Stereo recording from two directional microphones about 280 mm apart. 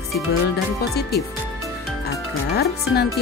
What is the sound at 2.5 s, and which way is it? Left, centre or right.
Speech, left.